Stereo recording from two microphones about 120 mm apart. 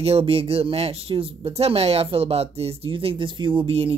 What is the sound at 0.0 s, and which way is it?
Speech, 55° right (ahead or behind).